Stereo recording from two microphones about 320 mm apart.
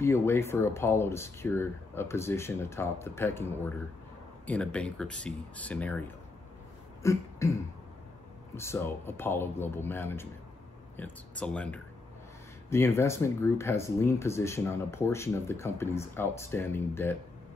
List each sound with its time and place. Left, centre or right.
0.0 s speech: centre
7.0 s cough: centre
8.5 s speech: centre